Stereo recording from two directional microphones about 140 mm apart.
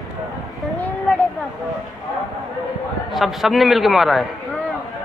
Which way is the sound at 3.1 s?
Centre (ahead or behind).